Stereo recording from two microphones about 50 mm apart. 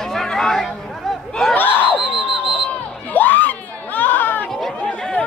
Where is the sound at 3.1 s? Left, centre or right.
Left.